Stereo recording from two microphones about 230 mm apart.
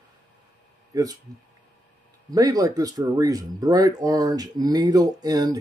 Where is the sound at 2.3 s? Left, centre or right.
Centre.